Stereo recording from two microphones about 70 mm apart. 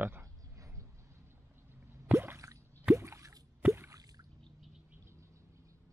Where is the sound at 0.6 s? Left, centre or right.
Right.